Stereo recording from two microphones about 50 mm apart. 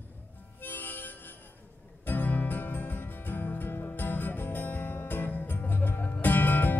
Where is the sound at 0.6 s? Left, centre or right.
Left.